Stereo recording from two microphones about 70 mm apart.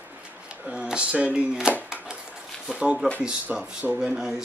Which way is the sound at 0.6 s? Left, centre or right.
Centre.